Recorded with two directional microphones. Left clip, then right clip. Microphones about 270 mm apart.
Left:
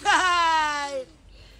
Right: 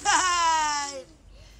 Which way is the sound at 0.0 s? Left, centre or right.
Centre.